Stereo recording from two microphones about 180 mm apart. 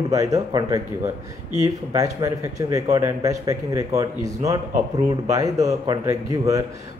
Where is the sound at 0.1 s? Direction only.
20° right (ahead or behind).